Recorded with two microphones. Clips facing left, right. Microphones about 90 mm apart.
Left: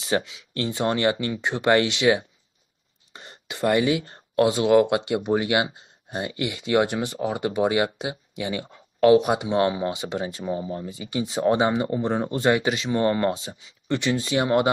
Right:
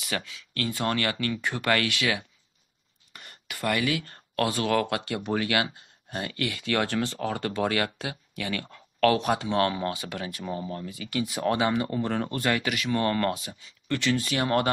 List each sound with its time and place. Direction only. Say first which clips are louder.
0.0 s speech: left 8 dB; 25° left (ahead or behind)